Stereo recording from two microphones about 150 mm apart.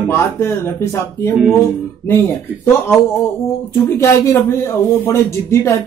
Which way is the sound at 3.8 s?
15° left (ahead or behind).